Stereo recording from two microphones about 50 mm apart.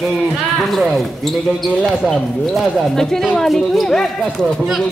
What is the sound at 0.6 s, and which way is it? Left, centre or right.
Speech, centre.